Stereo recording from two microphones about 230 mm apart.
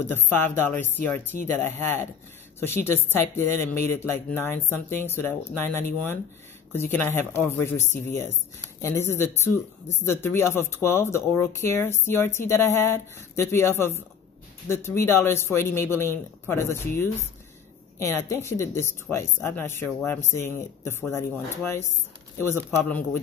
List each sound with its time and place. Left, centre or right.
0.0 s speech: centre